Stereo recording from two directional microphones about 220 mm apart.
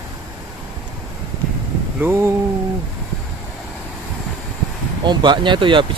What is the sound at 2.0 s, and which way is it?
Speech, 10° right (ahead or behind).